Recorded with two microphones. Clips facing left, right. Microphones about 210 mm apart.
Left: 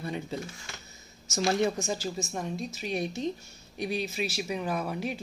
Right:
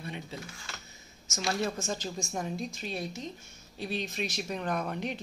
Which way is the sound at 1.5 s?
20° left (ahead or behind).